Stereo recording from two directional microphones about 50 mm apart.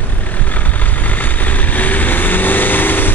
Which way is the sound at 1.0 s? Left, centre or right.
Left.